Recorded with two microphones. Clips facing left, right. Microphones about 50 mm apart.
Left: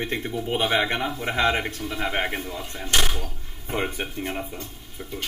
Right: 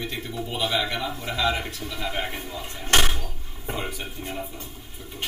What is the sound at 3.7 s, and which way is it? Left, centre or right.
Speech, left.